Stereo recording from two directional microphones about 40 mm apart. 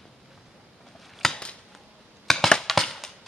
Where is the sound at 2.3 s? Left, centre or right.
Centre.